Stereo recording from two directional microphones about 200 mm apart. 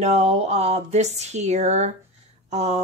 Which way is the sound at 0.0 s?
30° right (ahead or behind).